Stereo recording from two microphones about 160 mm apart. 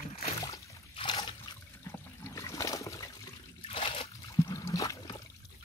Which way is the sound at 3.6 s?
35° left (ahead or behind).